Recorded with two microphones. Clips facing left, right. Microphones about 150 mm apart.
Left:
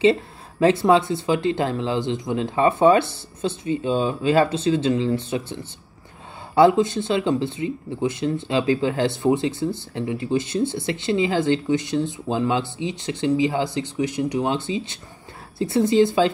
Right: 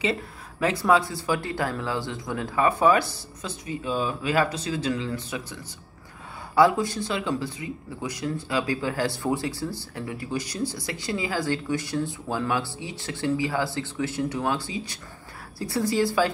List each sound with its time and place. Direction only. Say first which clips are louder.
0.0 s speech: left 9 dB; 30° left (ahead or behind)